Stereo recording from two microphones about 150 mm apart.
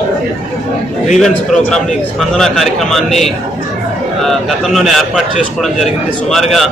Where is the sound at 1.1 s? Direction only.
Centre (ahead or behind).